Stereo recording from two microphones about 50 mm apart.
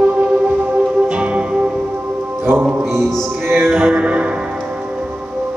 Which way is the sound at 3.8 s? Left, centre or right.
Right.